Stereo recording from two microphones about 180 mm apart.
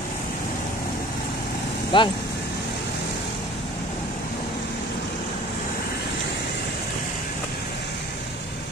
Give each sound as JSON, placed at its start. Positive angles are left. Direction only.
{"t": 1.9, "sound": "speech", "side_deg": 25}